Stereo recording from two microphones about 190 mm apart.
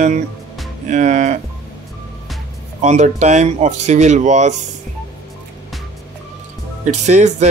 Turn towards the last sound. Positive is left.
turn(degrees=-35)  # may be behind; listen again after turning